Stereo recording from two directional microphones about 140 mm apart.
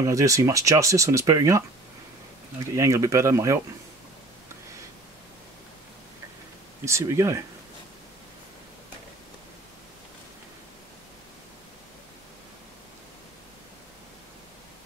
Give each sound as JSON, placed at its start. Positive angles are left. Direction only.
{"t": 0.0, "sound": "speech", "side_deg": -25}
{"t": 2.7, "sound": "speech", "side_deg": -25}
{"t": 6.8, "sound": "speech", "side_deg": -20}